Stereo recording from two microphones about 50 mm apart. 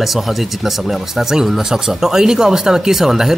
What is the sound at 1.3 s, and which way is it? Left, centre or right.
Speech, centre.